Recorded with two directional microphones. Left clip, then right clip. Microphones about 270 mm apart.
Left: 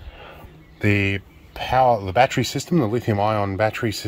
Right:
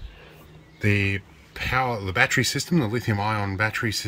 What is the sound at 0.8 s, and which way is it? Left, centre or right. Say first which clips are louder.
Speech: left 3 dB; centre.